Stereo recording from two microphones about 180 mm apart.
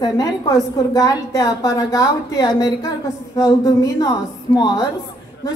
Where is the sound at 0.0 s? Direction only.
20° left (ahead or behind).